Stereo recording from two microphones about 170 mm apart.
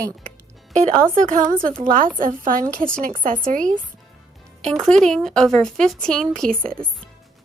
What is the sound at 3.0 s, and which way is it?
Speech, 55° right (ahead or behind).